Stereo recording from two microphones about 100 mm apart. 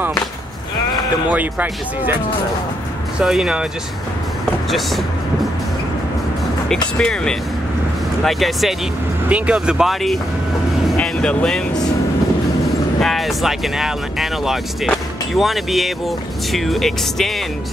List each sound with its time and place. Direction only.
1.3 s speech: 15° right (ahead or behind)
3.2 s speech: 5° right (ahead or behind)
4.6 s speech: centre (ahead or behind)
6.7 s speech: 5° left (ahead or behind)
11.0 s speech: 10° left (ahead or behind)
13.0 s speech: centre (ahead or behind)